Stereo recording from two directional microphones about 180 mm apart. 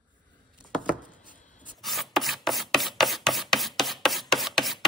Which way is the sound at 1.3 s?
45° left (ahead or behind).